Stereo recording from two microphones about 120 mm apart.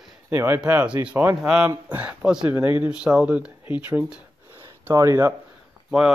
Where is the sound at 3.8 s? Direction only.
15° right (ahead or behind).